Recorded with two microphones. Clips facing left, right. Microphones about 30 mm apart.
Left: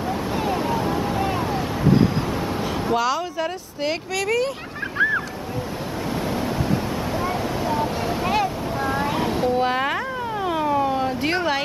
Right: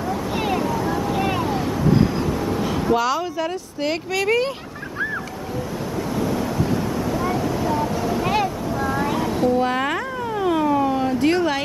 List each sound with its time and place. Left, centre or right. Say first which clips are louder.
0.6 s vehicle: even; left
1.1 s vehicle: right 2 dB; centre
1.4 s vehicle: right 1 dB; centre
4.1 s speech: right 3 dB; centre
6.2 s waves: right 2 dB; left
8.2 s boat: even; centre
8.8 s vehicle: even; centre
10.4 s siren: right 3 dB; centre
11.1 s a sound: right 3 dB; centre